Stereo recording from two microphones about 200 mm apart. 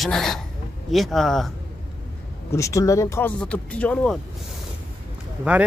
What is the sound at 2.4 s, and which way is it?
Speech, 15° left (ahead or behind).